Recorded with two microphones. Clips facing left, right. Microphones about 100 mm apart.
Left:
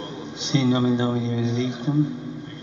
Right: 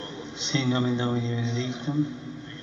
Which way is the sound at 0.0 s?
15° left (ahead or behind).